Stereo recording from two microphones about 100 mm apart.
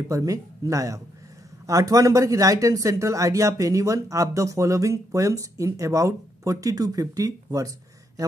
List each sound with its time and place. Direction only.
0.1 s speech: 35° right (ahead or behind)